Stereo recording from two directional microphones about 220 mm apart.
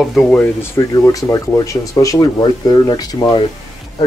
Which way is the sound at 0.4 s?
10° left (ahead or behind).